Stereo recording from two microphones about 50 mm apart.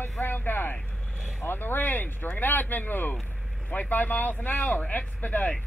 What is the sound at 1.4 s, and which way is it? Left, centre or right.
Speech, left.